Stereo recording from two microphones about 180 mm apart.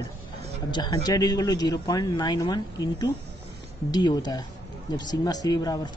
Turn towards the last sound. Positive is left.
turn(degrees=20)  # may be behind; listen again after turning